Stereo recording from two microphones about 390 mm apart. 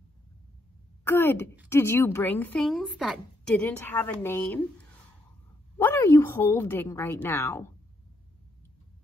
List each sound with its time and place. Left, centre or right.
1.0 s a woman's voice: centre
5.8 s a woman's voice: centre